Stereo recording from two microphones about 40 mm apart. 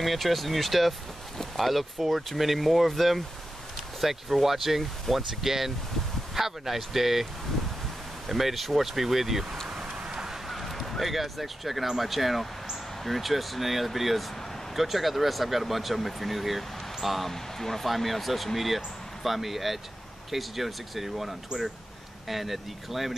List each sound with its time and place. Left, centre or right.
0.0 s speech: centre
8.3 s speech: centre
9.9 s goose: centre
10.5 s speech: centre
17.3 s speech: centre